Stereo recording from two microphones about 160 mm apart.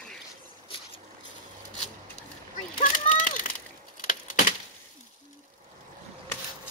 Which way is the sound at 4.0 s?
55° left (ahead or behind).